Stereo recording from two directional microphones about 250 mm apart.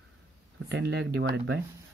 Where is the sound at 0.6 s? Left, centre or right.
Right.